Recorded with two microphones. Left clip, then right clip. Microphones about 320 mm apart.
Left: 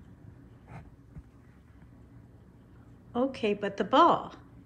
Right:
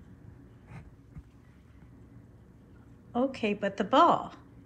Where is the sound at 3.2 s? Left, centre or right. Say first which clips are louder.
Left 2 dB; centre.